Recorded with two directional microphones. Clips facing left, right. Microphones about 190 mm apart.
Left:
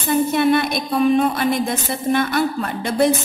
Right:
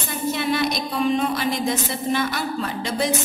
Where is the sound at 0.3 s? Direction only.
55° left (ahead or behind).